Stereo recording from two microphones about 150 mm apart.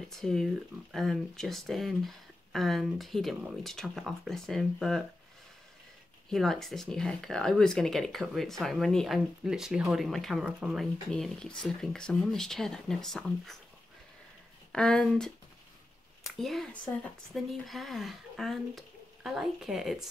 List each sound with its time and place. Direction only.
0.1 s speech: centre (ahead or behind)
6.3 s speech: centre (ahead or behind)
14.7 s speech: 5° left (ahead or behind)
16.3 s speech: centre (ahead or behind)